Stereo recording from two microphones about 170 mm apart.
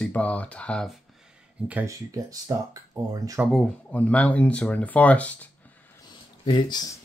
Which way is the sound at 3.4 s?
5° left (ahead or behind).